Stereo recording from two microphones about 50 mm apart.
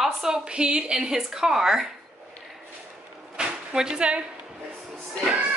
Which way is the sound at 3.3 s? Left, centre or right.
Centre.